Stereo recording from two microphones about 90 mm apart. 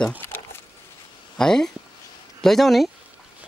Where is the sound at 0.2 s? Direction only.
25° left (ahead or behind).